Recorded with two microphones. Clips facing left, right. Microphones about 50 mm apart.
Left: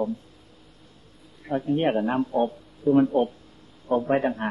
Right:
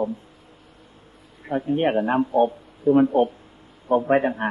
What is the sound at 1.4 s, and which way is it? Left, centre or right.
A man's voice, centre.